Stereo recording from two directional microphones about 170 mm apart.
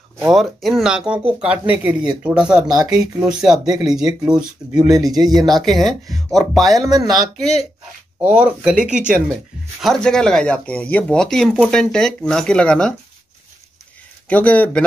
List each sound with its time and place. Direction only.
0.3 s speech: centre (ahead or behind)
5.0 s speech: 20° right (ahead or behind)
5.7 s speech: centre (ahead or behind)
14.3 s speech: 10° left (ahead or behind)